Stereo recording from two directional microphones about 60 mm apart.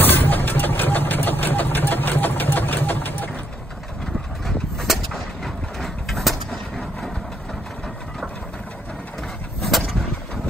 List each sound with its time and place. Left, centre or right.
0.0 s vehicle: left
4.7 s bird: centre
9.6 s vehicle: centre